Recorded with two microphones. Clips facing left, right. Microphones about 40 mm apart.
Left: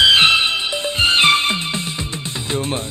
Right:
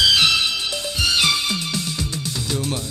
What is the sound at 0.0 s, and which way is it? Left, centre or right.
Music, left.